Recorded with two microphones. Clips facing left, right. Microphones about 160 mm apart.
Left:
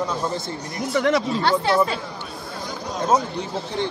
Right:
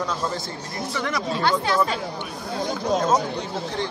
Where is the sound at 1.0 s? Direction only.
30° left (ahead or behind).